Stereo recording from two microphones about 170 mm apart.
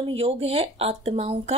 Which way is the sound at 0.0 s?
35° right (ahead or behind).